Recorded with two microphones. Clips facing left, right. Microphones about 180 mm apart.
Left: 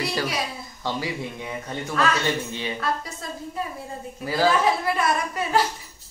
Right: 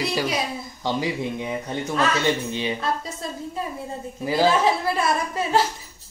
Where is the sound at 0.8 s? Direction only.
20° right (ahead or behind).